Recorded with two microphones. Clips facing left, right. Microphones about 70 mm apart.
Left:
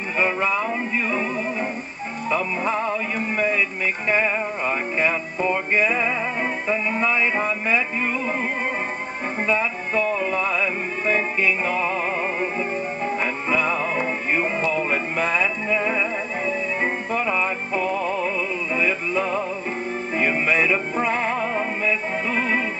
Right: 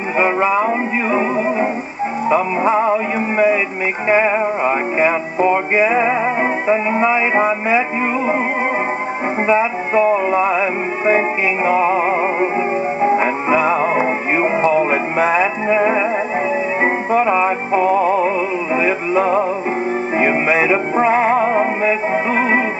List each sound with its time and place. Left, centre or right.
0.2 s a sound: centre
2.2 s speech: centre
4.1 s music: right
9.5 s music: right
15.7 s music: right
17.2 s music: right